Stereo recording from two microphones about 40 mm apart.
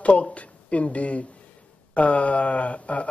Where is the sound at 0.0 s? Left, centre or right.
Left.